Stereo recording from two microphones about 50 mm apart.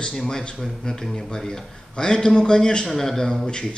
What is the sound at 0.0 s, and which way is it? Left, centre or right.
Speech, centre.